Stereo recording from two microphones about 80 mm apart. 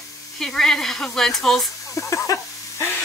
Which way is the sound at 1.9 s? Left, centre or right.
Left.